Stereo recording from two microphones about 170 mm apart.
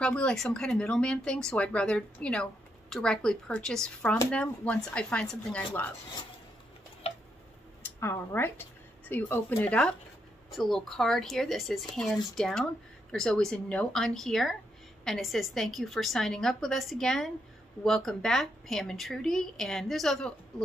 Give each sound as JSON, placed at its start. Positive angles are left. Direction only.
{"t": 0.0, "sound": "speech", "side_deg": 5}
{"t": 7.8, "sound": "speech", "side_deg": 15}